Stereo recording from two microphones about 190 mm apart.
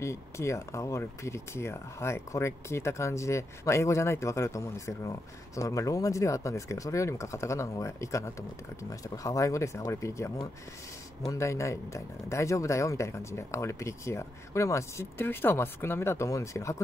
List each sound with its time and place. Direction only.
0.0 s speech: 15° left (ahead or behind)